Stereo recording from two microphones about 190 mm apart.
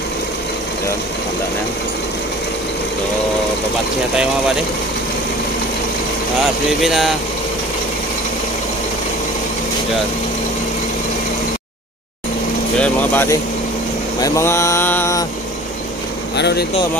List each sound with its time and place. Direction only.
6.8 s speech: centre (ahead or behind)
12.7 s speech: 10° left (ahead or behind)
14.2 s mantra: 15° left (ahead or behind)
16.3 s speech: 65° left (ahead or behind)